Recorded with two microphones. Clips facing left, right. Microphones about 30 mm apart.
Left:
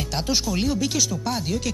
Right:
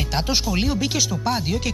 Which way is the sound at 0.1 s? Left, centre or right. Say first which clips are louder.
Right 1 dB; centre.